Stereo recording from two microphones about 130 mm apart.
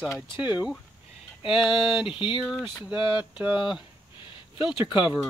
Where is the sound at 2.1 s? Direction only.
40° left (ahead or behind).